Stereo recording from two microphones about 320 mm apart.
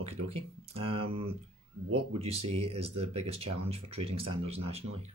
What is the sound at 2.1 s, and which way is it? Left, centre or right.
Speech, centre.